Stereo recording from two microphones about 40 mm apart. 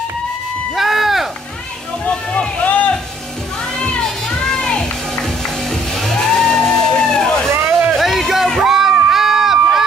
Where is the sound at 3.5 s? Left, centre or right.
Centre.